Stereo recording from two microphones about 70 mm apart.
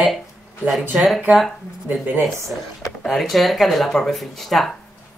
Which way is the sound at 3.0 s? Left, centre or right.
Centre.